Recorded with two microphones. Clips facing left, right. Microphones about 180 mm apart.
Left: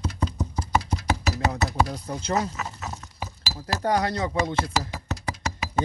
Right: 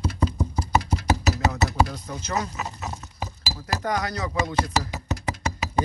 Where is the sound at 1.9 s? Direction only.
30° left (ahead or behind).